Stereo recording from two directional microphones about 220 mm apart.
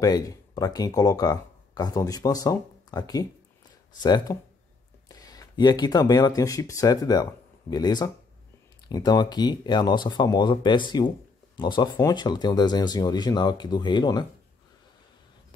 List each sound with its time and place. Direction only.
0.0 s speech: 15° left (ahead or behind)